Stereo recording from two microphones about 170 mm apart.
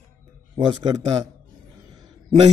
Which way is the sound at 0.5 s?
25° right (ahead or behind).